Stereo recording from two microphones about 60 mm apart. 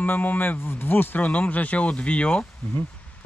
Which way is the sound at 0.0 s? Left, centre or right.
Left.